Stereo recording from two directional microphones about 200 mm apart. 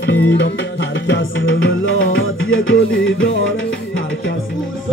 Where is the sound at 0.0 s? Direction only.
70° left (ahead or behind).